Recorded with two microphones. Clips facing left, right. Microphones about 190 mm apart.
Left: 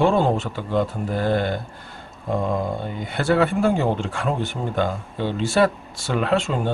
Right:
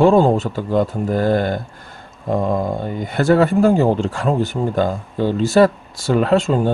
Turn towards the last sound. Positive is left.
turn(degrees=-40)  # may be behind; listen again after turning